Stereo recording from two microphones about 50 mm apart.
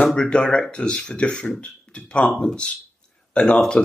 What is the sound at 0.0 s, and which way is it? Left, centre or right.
Speech, centre.